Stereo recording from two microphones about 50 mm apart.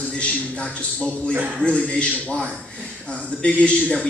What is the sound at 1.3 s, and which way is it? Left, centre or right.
Speech, right.